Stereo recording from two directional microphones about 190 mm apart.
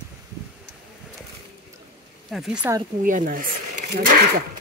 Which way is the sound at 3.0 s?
45° right (ahead or behind).